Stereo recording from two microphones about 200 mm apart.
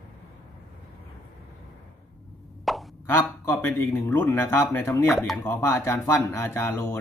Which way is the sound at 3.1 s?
15° left (ahead or behind).